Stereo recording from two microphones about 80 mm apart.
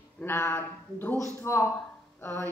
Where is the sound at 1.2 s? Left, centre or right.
Left.